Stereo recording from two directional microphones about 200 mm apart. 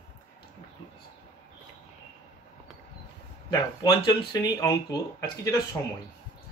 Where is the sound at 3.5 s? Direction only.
15° left (ahead or behind).